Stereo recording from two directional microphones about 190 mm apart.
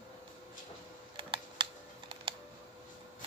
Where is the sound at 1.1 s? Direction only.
25° right (ahead or behind).